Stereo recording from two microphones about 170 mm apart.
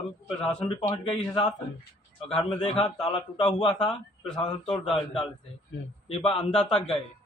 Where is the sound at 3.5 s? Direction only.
25° left (ahead or behind).